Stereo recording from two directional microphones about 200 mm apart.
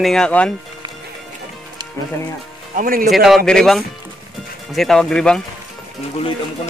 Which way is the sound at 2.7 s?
45° right (ahead or behind).